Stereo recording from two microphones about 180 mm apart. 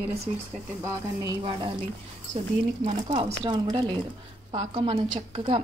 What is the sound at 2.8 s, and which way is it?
Speech, 35° right (ahead or behind).